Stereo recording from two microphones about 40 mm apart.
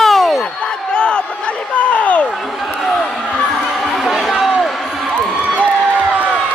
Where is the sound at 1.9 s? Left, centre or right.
Left.